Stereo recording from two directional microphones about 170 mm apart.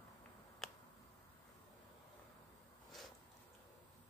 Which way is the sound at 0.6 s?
Centre (ahead or behind).